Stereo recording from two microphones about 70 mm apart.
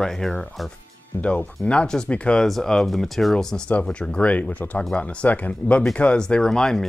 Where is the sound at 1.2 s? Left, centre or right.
Centre.